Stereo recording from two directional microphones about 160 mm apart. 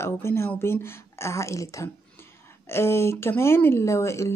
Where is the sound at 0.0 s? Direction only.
15° left (ahead or behind).